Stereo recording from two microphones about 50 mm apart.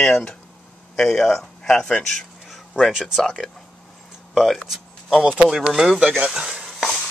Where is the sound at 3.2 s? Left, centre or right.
Centre.